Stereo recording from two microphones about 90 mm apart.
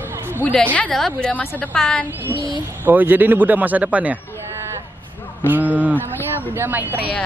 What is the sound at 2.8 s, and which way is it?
Speech, 20° right (ahead or behind).